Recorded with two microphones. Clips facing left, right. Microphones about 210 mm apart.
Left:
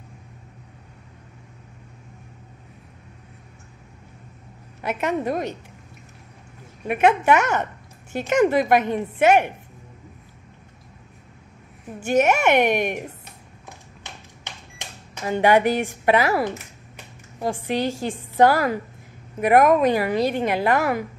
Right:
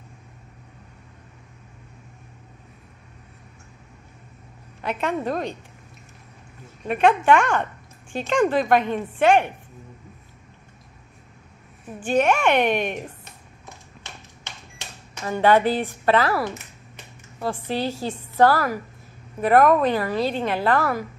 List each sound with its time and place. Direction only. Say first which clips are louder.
4.8 s a woman's voice: left 1 dB; 10° left (ahead or behind)
6.9 s a woman's voice: even; 10° left (ahead or behind)
12.2 s a woman's voice: left 1 dB; 10° left (ahead or behind)
14.4 s microwave oven: left 2 dB; 15° left (ahead or behind)
17.4 s a woman's voice: left 2 dB; 15° left (ahead or behind)